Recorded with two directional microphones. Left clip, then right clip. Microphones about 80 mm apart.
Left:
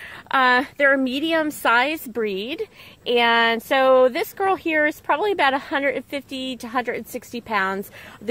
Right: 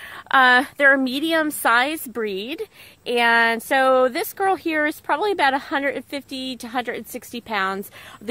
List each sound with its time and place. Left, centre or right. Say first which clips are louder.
0.3 s a woman's voice: right 3 dB; right